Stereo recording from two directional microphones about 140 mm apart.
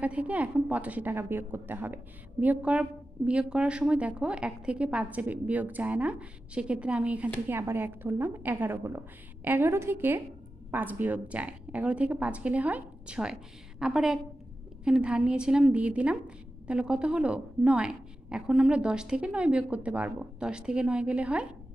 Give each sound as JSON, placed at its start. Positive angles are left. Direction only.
{"t": 0.0, "sound": "a woman's voice", "side_deg": -10}